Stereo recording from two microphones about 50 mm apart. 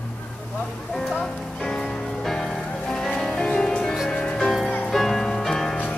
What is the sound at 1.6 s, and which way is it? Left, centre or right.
Music, centre.